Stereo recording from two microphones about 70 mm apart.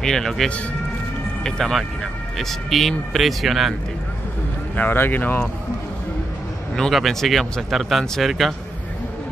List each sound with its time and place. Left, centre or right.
0.0 s speech: centre
4.7 s speech: left
6.9 s speech: centre